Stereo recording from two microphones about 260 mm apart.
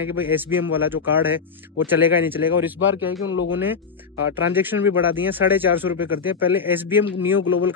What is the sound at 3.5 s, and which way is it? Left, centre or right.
Speech, centre.